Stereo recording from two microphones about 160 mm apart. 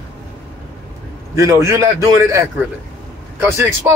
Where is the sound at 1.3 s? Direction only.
20° right (ahead or behind).